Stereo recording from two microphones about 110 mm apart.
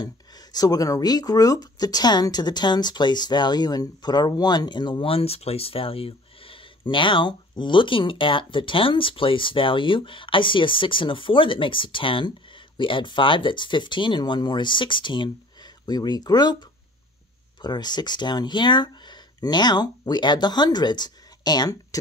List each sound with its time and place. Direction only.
0.0 s speech: 35° left (ahead or behind)